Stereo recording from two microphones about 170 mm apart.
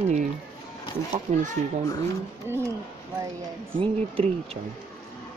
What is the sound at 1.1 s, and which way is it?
Speech, 45° right (ahead or behind).